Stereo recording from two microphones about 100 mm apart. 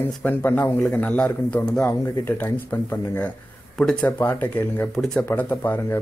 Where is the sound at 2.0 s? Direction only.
20° left (ahead or behind).